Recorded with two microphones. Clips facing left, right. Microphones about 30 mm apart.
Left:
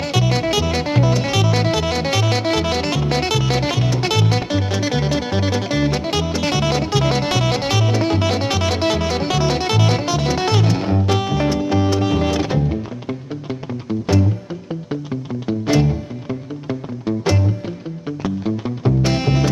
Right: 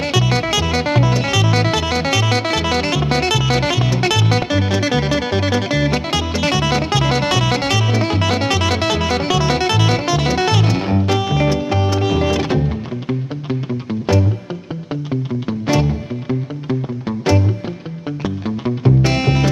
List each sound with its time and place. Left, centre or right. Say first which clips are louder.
0.7 s music: right 2 dB; centre
9.4 s music: right 2 dB; centre
15.4 s music: left 2 dB; centre